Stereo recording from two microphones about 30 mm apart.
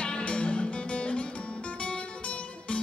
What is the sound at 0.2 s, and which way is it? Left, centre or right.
Music, left.